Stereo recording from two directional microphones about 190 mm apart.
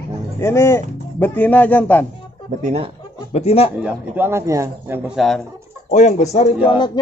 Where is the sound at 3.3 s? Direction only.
30° left (ahead or behind).